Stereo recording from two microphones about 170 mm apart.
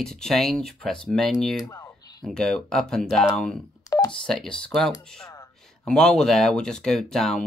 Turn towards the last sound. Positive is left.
turn(degrees=0)  # may be behind; listen again after turning